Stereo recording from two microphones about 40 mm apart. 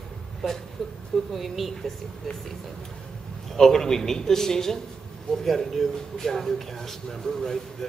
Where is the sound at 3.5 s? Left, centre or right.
Centre.